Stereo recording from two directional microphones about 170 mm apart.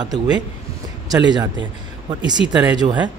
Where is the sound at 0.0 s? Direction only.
25° right (ahead or behind).